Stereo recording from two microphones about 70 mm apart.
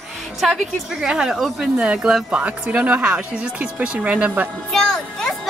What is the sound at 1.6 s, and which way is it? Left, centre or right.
Speech, centre.